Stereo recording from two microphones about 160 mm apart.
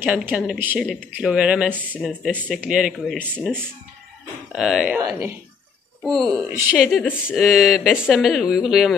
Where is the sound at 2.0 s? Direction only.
5° left (ahead or behind).